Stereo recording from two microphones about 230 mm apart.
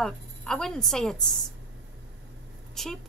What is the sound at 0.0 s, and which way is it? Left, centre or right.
A woman's voice, centre.